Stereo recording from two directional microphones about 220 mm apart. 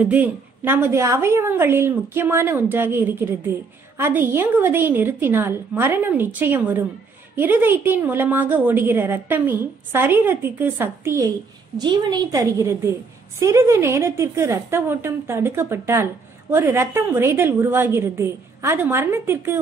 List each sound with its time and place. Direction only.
0.0 s a woman's voice: 10° right (ahead or behind)